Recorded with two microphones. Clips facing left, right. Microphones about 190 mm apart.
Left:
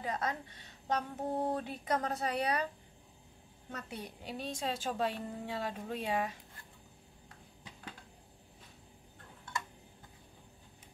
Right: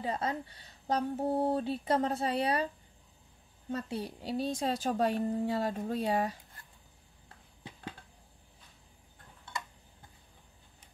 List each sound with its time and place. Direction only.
0.0 s speech: 30° right (ahead or behind)
3.7 s a woman's voice: 30° right (ahead or behind)